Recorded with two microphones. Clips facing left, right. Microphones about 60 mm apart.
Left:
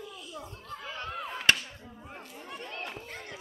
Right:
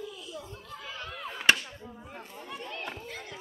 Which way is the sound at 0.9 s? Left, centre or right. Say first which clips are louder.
Left 3 dB; left.